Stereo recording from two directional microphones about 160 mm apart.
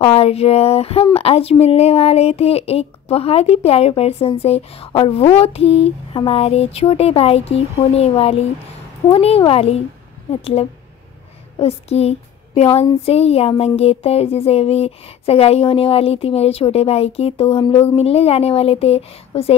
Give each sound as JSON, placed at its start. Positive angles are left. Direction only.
{"t": 0.0, "sound": "a woman's voice", "side_deg": 40}